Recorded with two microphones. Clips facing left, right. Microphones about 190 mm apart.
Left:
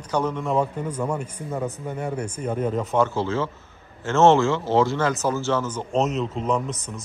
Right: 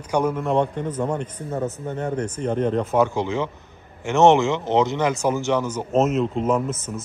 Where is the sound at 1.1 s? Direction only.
10° left (ahead or behind).